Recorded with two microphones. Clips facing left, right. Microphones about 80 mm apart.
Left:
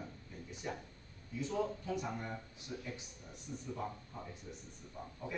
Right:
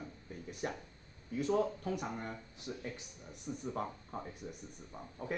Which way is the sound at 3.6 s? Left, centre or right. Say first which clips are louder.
Right 2 dB; right.